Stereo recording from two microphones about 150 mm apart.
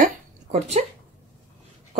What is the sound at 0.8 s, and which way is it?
Speech, 45° right (ahead or behind).